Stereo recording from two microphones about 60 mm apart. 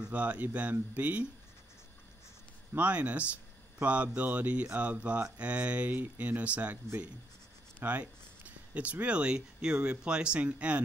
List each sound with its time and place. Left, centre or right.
0.0 s mantra: right
2.7 s mantra: right
7.8 s speech: right